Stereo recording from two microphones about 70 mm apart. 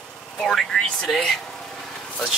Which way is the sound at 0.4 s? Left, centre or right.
Centre.